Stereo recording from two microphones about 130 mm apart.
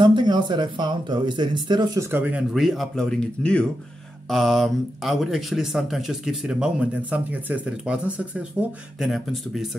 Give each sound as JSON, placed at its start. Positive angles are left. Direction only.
{"t": 0.0, "sound": "speech", "side_deg": -35}
{"t": 2.0, "sound": "speech", "side_deg": -15}